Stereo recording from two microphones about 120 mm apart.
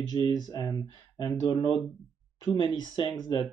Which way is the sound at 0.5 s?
30° left (ahead or behind).